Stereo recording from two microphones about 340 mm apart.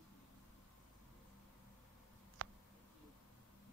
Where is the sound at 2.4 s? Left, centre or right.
Right.